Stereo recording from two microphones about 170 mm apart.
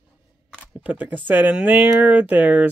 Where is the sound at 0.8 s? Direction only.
10° right (ahead or behind).